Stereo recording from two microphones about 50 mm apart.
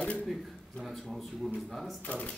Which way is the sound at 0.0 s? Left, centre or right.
Left.